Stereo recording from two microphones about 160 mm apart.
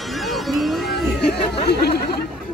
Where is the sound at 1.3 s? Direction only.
90° left.